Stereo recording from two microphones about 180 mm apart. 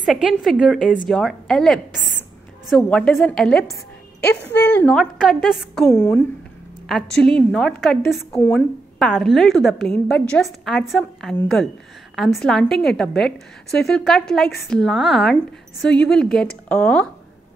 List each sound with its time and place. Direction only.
0.0 s a woman's voice: centre (ahead or behind)